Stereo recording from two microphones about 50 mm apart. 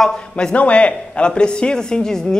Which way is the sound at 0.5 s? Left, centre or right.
Left.